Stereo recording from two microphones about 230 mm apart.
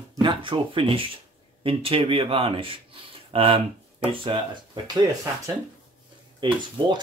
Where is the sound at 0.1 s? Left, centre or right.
Centre.